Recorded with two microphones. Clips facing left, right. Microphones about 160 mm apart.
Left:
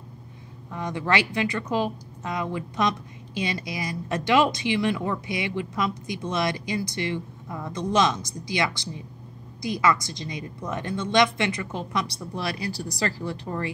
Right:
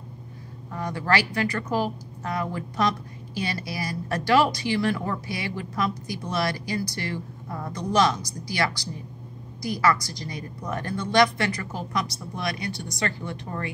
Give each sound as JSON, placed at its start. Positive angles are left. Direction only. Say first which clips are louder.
{"t": 0.7, "sound": "speech", "louder": "even", "side_deg": 20}